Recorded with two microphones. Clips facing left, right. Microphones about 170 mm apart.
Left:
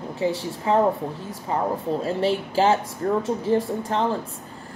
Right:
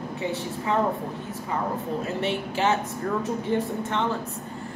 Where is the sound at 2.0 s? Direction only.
30° left (ahead or behind).